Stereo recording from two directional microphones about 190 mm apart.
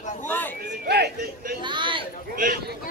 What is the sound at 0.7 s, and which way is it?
Chatter, 60° right (ahead or behind).